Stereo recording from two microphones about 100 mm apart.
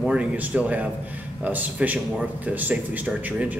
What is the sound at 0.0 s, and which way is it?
A man's voice, 10° right (ahead or behind).